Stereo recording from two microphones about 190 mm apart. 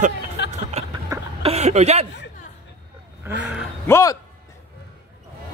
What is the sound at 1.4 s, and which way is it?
Speech, 35° right (ahead or behind).